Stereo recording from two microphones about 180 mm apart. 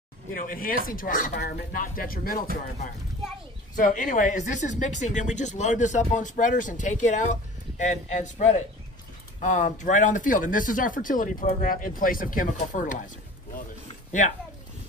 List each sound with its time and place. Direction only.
0.3 s speech: 50° left (ahead or behind)
1.3 s speech: 65° left (ahead or behind); by 13.1 s 45° left (ahead or behind)